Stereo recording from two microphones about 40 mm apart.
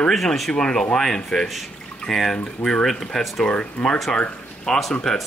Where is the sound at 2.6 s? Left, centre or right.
Left.